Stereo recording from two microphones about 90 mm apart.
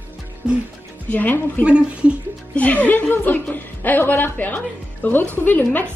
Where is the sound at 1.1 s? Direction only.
20° left (ahead or behind).